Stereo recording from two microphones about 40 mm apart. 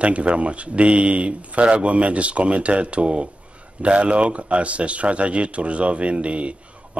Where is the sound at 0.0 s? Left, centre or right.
Right.